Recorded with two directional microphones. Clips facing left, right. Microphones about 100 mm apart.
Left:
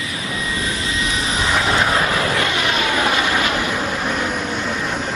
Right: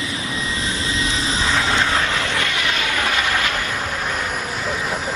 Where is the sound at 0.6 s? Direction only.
30° right (ahead or behind).